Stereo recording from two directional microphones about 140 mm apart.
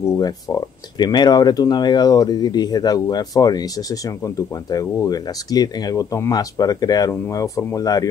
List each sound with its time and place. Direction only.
0.0 s speech: 20° left (ahead or behind)